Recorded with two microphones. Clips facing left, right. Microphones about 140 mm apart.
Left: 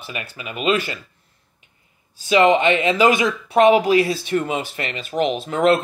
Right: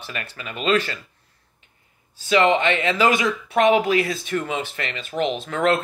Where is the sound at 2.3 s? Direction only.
15° left (ahead or behind).